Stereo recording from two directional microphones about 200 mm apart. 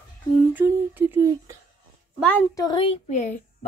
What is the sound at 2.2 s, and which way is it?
A child's voice, 10° left (ahead or behind).